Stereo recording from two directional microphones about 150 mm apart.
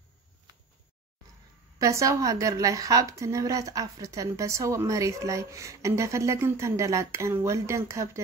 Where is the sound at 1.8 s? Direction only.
20° right (ahead or behind).